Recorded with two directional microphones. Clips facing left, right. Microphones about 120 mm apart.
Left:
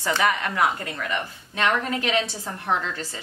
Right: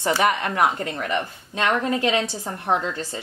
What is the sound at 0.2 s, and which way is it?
Speech, 25° right (ahead or behind).